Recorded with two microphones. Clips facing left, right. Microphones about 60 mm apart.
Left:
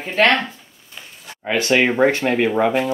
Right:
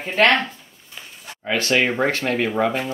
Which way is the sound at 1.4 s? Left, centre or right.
Centre.